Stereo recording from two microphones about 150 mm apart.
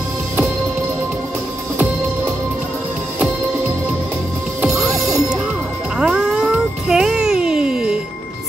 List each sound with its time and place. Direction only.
4.7 s music: 20° right (ahead or behind)
5.9 s music: 5° right (ahead or behind)